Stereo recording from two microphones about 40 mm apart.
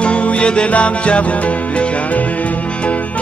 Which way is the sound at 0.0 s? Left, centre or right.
Left.